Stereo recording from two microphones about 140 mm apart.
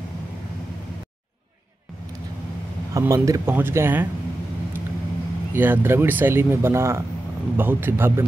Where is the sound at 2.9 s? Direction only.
25° right (ahead or behind).